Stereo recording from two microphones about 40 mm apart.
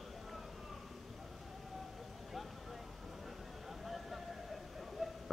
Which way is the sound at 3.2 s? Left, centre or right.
Centre.